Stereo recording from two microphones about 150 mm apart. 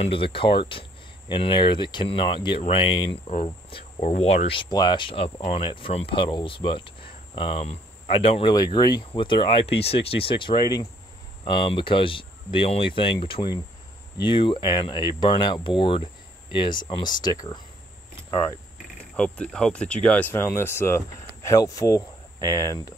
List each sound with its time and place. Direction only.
0.0 s speech: 35° left (ahead or behind)
4.0 s speech: 50° left (ahead or behind)
8.5 s speech: 25° left (ahead or behind)
19.1 s speech: 5° left (ahead or behind); by 22.8 s 20° left (ahead or behind)